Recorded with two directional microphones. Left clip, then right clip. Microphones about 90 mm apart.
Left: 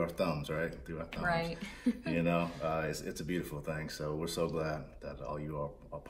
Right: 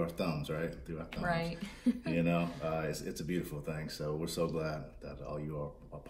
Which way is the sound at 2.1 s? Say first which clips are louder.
Left 1 dB; 45° left (ahead or behind).